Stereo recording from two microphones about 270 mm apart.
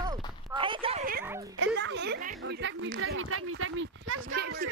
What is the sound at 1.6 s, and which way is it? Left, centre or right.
Speech, right.